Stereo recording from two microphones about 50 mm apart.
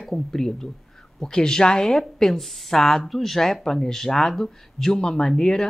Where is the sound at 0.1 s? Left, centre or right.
Centre.